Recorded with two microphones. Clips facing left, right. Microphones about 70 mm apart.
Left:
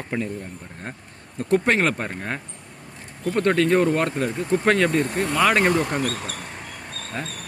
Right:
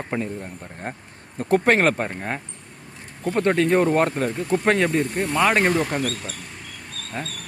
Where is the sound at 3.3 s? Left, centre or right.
Centre.